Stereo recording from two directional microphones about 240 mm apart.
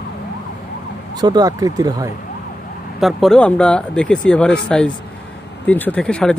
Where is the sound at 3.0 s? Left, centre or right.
Centre.